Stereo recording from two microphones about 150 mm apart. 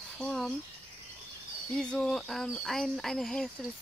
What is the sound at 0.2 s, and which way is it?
Speech, 5° left (ahead or behind).